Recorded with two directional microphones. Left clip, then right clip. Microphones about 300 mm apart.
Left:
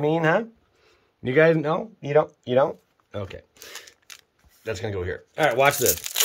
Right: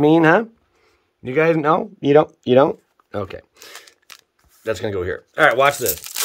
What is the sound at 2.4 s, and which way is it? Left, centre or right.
Speech, right.